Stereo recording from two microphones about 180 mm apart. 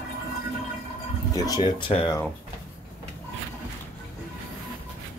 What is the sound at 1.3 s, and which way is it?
Speech, 20° left (ahead or behind).